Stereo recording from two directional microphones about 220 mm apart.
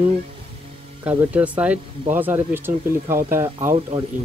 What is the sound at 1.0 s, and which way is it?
Speech, 5° right (ahead or behind).